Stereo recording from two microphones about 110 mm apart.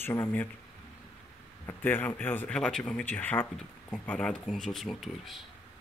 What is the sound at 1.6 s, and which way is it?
Speech, 20° left (ahead or behind).